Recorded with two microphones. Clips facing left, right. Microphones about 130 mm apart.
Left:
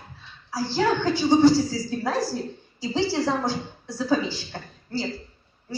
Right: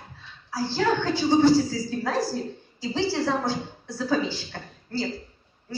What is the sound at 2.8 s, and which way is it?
A woman's voice, 15° left (ahead or behind).